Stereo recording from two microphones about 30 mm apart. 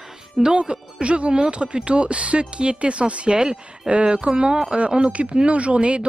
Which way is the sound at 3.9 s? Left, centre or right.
Right.